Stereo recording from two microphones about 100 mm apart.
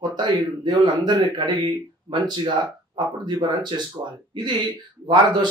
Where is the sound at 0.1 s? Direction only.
45° right (ahead or behind).